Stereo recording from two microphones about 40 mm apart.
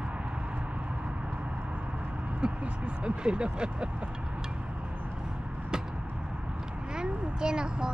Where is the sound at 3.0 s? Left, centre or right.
Right.